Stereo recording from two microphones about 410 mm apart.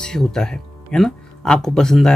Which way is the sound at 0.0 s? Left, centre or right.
Centre.